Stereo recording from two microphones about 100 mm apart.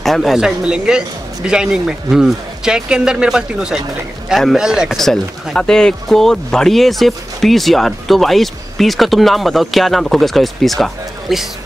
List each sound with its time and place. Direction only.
0.0 s speech: centre (ahead or behind)